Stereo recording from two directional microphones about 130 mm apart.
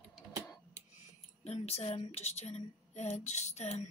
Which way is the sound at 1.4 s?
55° left (ahead or behind).